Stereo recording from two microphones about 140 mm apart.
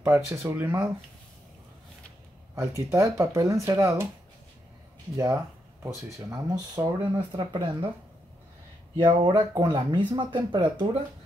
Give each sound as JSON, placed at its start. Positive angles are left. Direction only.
{"t": 0.0, "sound": "speech", "side_deg": -20}
{"t": 2.5, "sound": "speech", "side_deg": -20}
{"t": 5.1, "sound": "speech", "side_deg": -20}
{"t": 8.9, "sound": "speech", "side_deg": -35}